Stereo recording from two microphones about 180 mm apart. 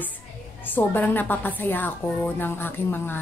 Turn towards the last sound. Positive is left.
turn(degrees=10)  # may be behind; listen again after turning